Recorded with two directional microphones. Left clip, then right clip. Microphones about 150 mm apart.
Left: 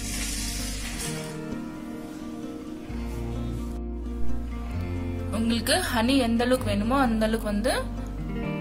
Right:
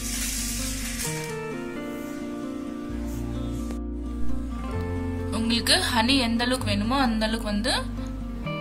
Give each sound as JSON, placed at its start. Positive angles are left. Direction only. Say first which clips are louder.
{"t": 5.3, "sound": "speech", "louder": "right 2 dB", "side_deg": 45}